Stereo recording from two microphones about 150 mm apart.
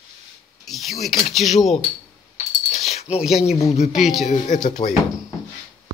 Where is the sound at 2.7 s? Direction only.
50° left (ahead or behind).